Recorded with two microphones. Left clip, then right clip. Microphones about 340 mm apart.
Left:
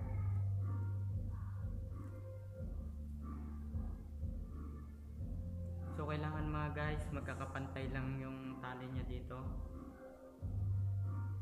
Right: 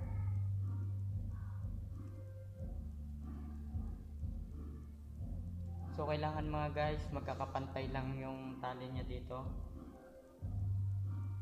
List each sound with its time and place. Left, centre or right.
5.9 s a man's voice: right